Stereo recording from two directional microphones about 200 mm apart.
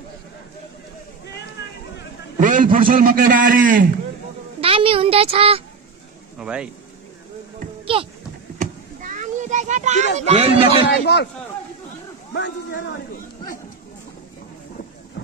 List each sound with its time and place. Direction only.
2.4 s a man's voice: 40° right (ahead or behind)
4.6 s a woman's voice: 25° right (ahead or behind)
6.3 s speech: 5° right (ahead or behind)
7.8 s a sound: 25° right (ahead or behind)
8.5 s a sound: 40° right (ahead or behind)
10.1 s speech: 30° right (ahead or behind)
10.9 s speech: 55° left (ahead or behind)
12.4 s speech: 60° left (ahead or behind)